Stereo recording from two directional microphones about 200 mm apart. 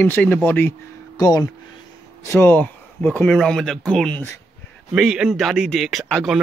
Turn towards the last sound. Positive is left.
turn(degrees=0)  # may be behind; listen again after turning